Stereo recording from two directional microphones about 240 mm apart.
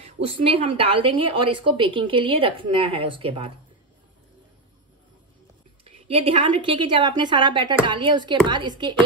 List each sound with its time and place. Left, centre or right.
0.4 s a woman's voice: right
5.9 s a woman's voice: right